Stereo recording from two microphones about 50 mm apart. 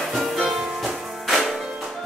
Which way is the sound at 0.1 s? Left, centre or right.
Centre.